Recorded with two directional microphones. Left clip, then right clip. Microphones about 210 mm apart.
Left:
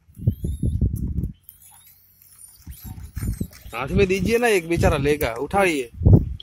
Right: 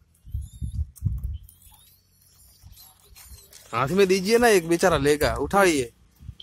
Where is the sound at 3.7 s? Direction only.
20° right (ahead or behind).